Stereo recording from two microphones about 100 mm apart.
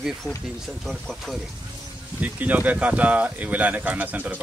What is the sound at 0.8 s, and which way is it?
Speech, centre (ahead or behind).